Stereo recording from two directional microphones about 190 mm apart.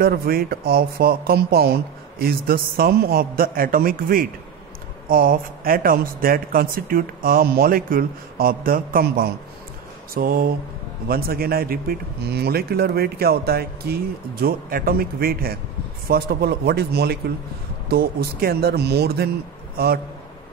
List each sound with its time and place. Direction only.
0.0 s speech: 50° right (ahead or behind)